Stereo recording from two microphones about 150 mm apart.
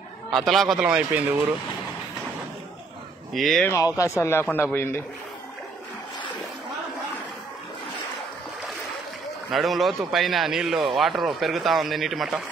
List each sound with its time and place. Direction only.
0.3 s speech: centre (ahead or behind)
3.3 s speech: centre (ahead or behind)
3.6 s speech: 20° left (ahead or behind)
9.5 s speech: centre (ahead or behind)